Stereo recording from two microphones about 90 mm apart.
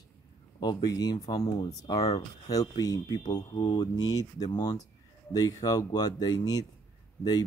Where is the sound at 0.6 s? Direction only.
50° left (ahead or behind).